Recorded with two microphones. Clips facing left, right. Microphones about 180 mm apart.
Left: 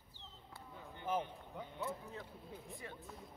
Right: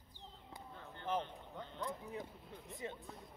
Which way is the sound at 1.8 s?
15° right (ahead or behind).